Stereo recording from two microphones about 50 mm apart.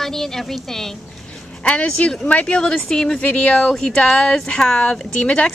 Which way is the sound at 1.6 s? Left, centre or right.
Left.